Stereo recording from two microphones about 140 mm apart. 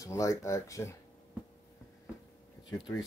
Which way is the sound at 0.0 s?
25° left (ahead or behind).